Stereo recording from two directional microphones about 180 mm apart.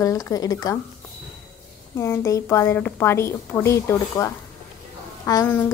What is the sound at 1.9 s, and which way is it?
A woman's voice, 15° left (ahead or behind).